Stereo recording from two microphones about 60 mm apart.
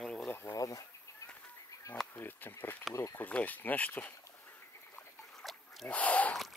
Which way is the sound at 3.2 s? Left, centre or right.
Left.